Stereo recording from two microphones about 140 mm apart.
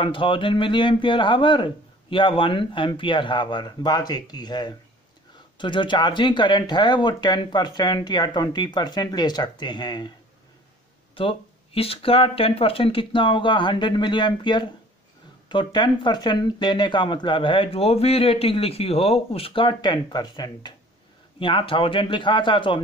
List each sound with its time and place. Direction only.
0.0 s speech: 35° left (ahead or behind)
11.1 s speech: 40° left (ahead or behind)